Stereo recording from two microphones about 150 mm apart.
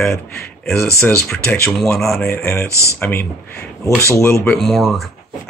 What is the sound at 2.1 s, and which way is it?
Speech, 15° left (ahead or behind).